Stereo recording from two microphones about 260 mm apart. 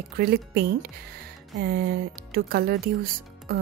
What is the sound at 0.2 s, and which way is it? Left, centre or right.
Speech, right.